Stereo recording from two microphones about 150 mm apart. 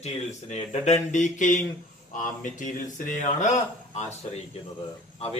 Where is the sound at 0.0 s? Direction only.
50° left (ahead or behind).